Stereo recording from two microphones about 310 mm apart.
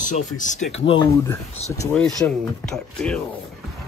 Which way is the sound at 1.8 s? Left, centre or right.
Centre.